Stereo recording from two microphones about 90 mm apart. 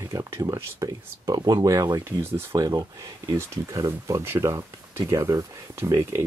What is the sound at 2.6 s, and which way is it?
Speech, 45° right (ahead or behind).